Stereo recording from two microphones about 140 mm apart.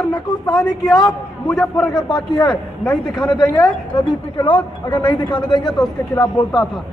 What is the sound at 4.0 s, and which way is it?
A man's voice, 30° left (ahead or behind).